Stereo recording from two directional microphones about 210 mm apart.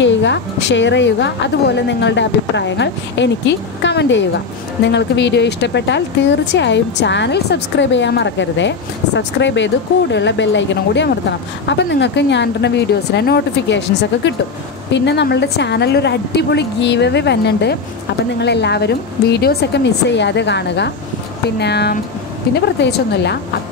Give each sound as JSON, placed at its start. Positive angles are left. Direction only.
{"t": 0.0, "sound": "a woman's voice", "side_deg": 60}